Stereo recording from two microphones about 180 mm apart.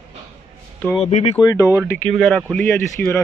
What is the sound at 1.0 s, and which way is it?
Speech, 35° left (ahead or behind).